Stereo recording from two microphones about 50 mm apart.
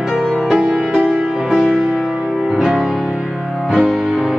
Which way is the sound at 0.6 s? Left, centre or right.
Centre.